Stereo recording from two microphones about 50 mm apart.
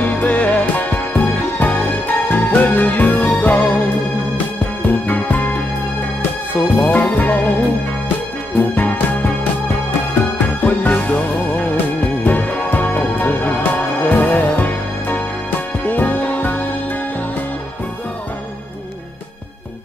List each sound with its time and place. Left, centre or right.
0.0 s music: left
4.8 s music: left
6.8 s music: left
8.5 s music: left
10.6 s music: left